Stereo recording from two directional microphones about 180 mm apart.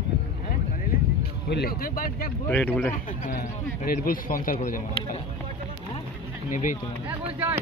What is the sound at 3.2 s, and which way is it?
Speech, 50° left (ahead or behind).